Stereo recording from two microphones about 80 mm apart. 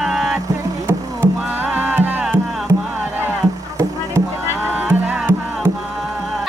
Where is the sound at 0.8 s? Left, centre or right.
Right.